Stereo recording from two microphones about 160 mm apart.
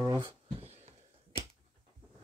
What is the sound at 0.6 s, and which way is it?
Wheeze, 40° right (ahead or behind).